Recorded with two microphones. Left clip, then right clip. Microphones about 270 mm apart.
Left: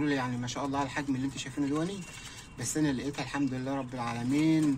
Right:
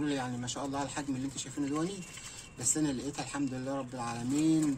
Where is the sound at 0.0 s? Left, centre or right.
Centre.